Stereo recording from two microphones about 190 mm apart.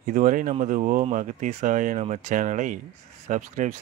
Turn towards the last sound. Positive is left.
turn(degrees=-40)  # may be behind; listen again after turning